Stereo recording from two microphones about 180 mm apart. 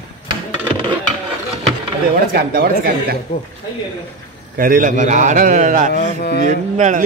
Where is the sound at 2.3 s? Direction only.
55° right (ahead or behind).